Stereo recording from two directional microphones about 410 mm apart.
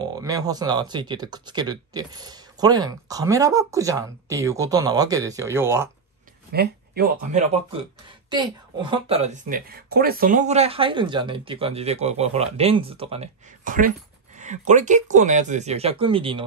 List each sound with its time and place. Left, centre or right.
0.0 s speech: centre
6.5 s speech: right
8.9 s speech: centre